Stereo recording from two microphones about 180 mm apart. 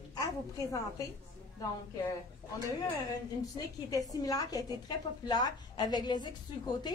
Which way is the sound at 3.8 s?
20° left (ahead or behind).